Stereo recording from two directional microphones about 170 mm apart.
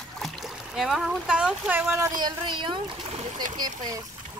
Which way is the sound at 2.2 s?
25° right (ahead or behind).